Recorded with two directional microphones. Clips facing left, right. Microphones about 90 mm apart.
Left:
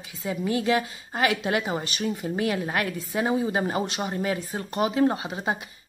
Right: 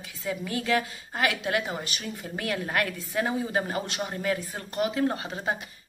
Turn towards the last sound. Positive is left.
turn(degrees=15)  # may be behind; listen again after turning